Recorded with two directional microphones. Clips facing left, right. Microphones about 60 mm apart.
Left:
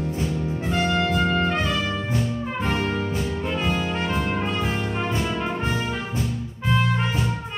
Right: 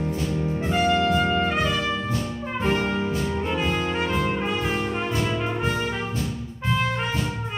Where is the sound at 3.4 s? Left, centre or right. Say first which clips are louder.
Left 2 dB; centre.